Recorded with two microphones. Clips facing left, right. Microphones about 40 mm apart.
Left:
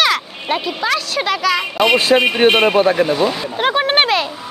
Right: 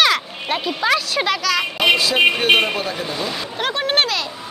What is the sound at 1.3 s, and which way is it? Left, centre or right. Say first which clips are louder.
Speech: left 6 dB; centre.